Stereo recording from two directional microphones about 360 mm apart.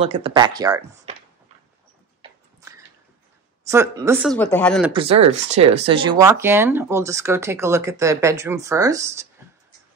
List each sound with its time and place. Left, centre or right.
0.0 s speech: centre
3.7 s speech: centre
4.9 s speech: centre